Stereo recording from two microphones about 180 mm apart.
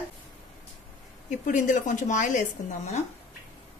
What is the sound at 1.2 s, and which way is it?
A woman's voice, 45° left (ahead or behind).